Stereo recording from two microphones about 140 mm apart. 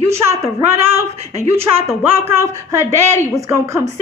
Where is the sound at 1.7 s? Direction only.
15° right (ahead or behind).